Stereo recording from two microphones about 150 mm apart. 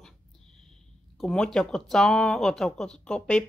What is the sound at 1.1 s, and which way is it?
Speech, 5° left (ahead or behind).